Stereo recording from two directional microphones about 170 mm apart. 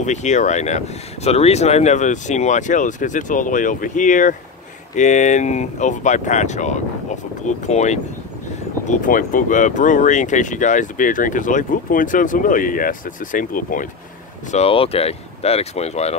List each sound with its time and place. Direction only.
0.0 s speech: 45° left (ahead or behind)
14.5 s speech: 35° left (ahead or behind)